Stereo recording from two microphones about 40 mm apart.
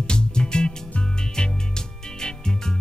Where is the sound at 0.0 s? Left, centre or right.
Left.